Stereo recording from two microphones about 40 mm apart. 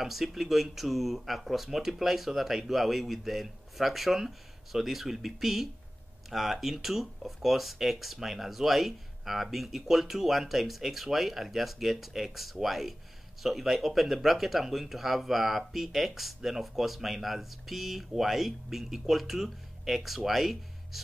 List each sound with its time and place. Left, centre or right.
0.0 s speech: centre